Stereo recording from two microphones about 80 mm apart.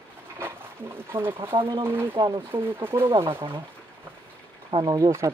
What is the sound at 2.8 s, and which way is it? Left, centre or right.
Speech, right.